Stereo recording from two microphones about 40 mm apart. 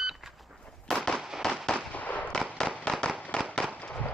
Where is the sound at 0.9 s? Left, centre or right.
Centre.